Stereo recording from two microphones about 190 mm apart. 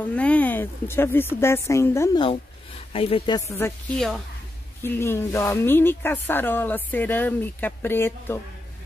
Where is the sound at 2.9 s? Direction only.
30° left (ahead or behind).